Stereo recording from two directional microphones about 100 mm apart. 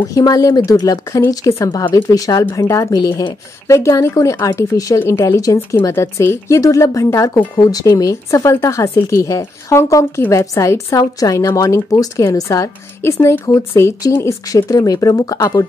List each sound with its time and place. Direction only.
0.0 s speech: 35° left (ahead or behind)
4.9 s a woman's voice: 25° left (ahead or behind)
5.2 s a woman's voice: 35° left (ahead or behind)